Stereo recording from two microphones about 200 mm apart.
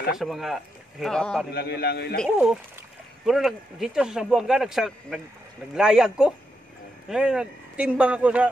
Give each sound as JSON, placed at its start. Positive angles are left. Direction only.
{"t": 0.1, "sound": "speech", "side_deg": 0}
{"t": 1.5, "sound": "a man's voice", "side_deg": 55}
{"t": 2.2, "sound": "speech", "side_deg": -5}